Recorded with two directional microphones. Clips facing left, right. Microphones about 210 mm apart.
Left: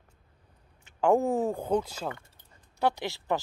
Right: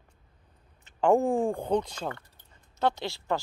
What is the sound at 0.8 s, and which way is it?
Speech, 5° left (ahead or behind).